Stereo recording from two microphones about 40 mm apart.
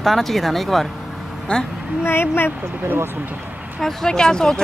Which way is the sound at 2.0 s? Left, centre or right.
Left.